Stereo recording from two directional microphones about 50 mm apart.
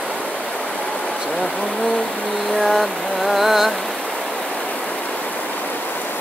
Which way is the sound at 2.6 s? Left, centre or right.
Centre.